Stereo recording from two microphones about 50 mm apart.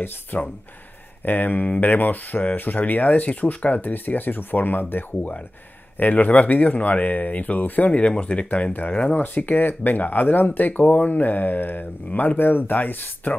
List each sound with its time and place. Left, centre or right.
0.3 s speech: left